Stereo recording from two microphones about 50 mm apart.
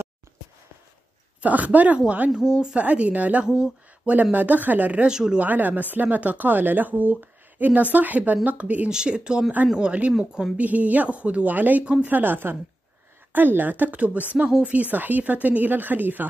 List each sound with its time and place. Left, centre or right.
1.4 s speech: right
2.3 s speech: centre
2.7 s speech: right
3.4 s a sound: centre
4.1 s speech: right
5.0 s speech: centre
5.4 s speech: right
8.9 s speech: centre; by 11.8 s right
11.8 s speech: right
12.1 s a woman's voice: right